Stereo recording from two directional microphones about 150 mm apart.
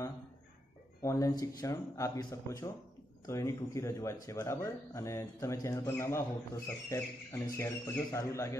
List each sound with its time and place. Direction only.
1.0 s speech: 20° left (ahead or behind)